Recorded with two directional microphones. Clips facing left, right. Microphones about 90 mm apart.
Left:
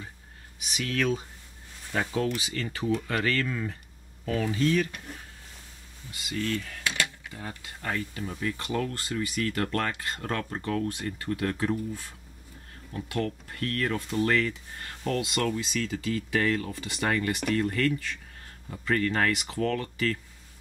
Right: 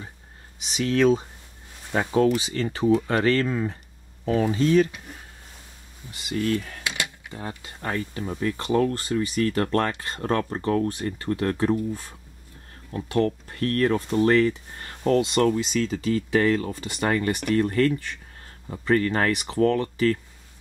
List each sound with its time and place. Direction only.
0.6 s speech: 25° right (ahead or behind)
4.9 s speech: 5° right (ahead or behind)
6.5 s speech: 30° right (ahead or behind)
6.8 s a sound: 15° right (ahead or behind)
7.3 s speech: 30° right (ahead or behind)
12.9 s speech: 35° right (ahead or behind)